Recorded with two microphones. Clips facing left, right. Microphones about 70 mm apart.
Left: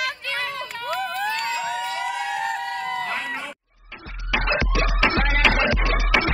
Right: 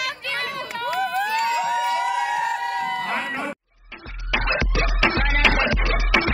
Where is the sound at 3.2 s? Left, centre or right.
Right.